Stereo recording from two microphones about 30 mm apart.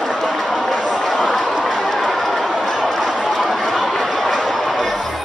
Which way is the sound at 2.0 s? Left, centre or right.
Centre.